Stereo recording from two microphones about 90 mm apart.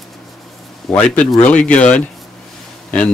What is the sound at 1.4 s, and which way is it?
Speech, 15° left (ahead or behind).